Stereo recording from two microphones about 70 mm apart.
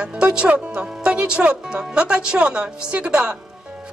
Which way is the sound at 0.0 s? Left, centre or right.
Centre.